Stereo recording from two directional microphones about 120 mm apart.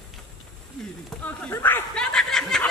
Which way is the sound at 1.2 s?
15° left (ahead or behind).